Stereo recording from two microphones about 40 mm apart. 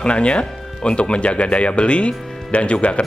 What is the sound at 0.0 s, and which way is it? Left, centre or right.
Speech, left.